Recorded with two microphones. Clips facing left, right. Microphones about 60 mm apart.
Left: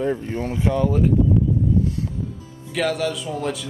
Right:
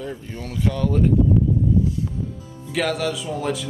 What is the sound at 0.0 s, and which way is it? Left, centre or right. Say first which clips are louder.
Speech: left 8 dB; left.